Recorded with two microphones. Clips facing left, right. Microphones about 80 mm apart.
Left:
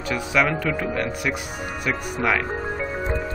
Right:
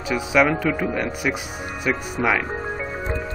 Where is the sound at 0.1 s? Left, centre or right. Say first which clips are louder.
Right 3 dB; centre.